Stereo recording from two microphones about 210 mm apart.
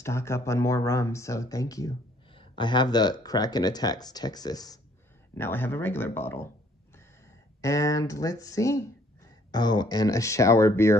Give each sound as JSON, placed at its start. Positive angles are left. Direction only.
{"t": 0.0, "sound": "speech", "side_deg": 15}
{"t": 7.6, "sound": "speech", "side_deg": 15}